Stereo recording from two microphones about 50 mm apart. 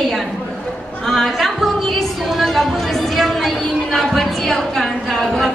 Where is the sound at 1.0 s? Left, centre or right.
Centre.